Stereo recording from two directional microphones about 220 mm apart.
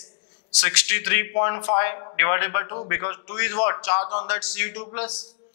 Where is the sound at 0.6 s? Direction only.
10° left (ahead or behind).